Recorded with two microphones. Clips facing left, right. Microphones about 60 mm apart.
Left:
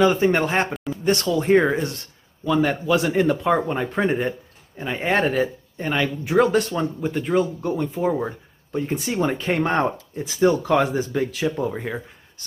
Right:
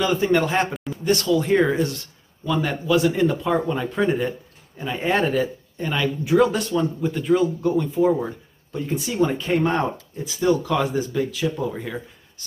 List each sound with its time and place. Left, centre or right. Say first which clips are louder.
0.0 s speech: left 2 dB; left
2.4 s speech: left 3 dB; left
8.9 s speech: right 2 dB; left
11.7 s speech: left 2 dB; left